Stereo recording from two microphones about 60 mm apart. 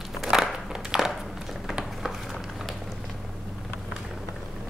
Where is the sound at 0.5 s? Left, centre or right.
Centre.